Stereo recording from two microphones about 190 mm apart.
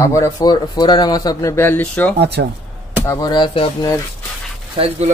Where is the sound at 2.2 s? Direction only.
60° right (ahead or behind).